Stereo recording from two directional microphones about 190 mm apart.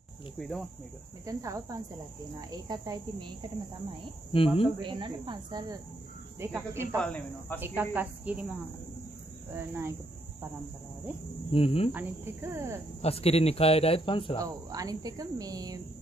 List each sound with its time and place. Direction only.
0.4 s cricket: 5° left (ahead or behind)
1.2 s cricket: 15° right (ahead or behind)
4.3 s speech: 30° left (ahead or behind)
4.8 s cricket: 25° right (ahead or behind)
7.0 s speech: 5° left (ahead or behind)
7.6 s cricket: 10° right (ahead or behind)
9.6 s cricket: 15° right (ahead or behind)
11.5 s speech: 30° left (ahead or behind)
11.9 s cricket: 10° right (ahead or behind)
13.0 s speech: 30° left (ahead or behind)
14.4 s cricket: 20° right (ahead or behind)